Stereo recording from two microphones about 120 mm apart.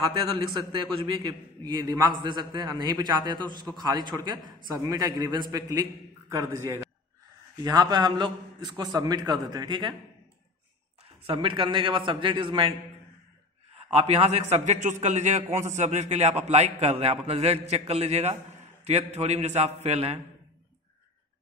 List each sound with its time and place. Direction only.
1.2 s a man's voice: 35° right (ahead or behind)
11.2 s a man's voice: 45° right (ahead or behind)
13.8 s a man's voice: 60° right (ahead or behind)